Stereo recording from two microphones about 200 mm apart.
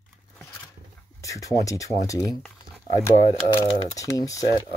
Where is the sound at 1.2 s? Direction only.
15° left (ahead or behind).